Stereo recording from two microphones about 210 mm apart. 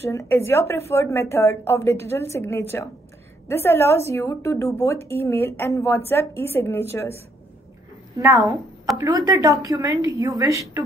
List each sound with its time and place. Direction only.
0.0 s a woman's voice: 15° left (ahead or behind)
8.2 s a woman's voice: 15° right (ahead or behind)